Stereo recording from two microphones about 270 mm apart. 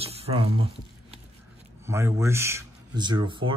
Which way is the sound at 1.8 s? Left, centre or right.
Centre.